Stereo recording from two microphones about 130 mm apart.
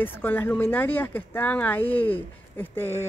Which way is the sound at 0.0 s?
15° left (ahead or behind).